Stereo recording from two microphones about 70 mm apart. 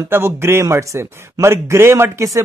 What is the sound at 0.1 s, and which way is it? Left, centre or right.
Speech, right.